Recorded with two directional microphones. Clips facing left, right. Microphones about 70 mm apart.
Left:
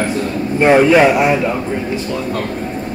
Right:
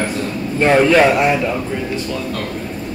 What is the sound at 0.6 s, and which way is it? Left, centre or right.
Speech, centre.